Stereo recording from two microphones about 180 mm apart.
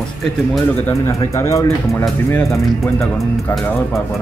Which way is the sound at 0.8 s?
15° left (ahead or behind).